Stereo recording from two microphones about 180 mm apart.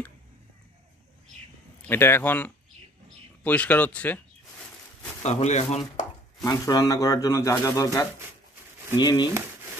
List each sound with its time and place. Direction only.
1.8 s speech: 10° left (ahead or behind)
5.2 s a man's voice: 40° left (ahead or behind)
6.4 s speech: 20° left (ahead or behind)